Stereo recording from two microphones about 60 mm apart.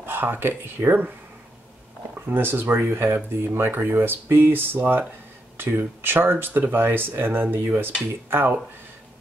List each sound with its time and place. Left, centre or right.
0.0 s speech: right
2.1 s speech: right